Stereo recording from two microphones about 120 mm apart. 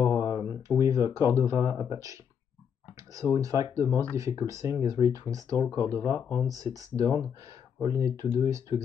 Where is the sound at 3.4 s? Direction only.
25° right (ahead or behind).